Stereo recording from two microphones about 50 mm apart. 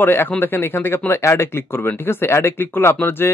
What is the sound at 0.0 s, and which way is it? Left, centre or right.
Speech, left.